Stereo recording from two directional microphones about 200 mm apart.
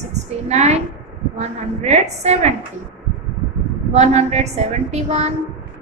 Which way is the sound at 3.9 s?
35° right (ahead or behind).